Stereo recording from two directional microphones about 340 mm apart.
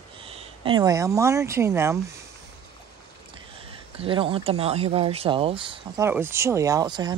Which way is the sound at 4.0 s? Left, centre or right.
Centre.